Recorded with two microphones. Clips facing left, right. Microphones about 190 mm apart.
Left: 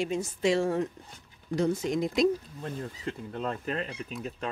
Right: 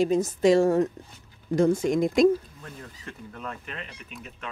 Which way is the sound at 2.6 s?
30° left (ahead or behind).